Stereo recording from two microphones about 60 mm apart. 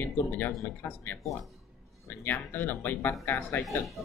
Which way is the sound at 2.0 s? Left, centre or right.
Left.